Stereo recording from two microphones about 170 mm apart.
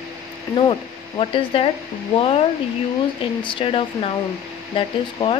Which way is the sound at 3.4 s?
30° left (ahead or behind).